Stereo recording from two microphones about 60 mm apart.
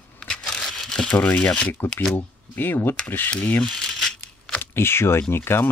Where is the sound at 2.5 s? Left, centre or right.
Left.